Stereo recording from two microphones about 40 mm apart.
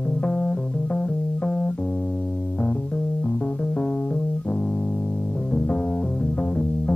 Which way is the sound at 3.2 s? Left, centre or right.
Left.